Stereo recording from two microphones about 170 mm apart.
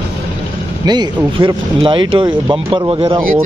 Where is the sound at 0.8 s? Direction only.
25° right (ahead or behind).